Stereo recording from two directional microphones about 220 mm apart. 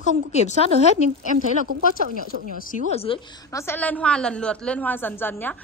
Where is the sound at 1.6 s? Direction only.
40° right (ahead or behind).